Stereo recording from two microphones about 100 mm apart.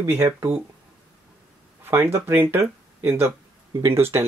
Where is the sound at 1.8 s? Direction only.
25° right (ahead or behind).